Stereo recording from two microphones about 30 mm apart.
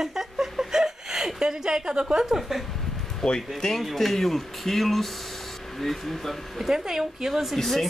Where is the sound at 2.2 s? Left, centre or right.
Centre.